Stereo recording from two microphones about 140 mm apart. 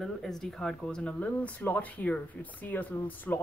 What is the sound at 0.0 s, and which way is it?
Speech, centre (ahead or behind).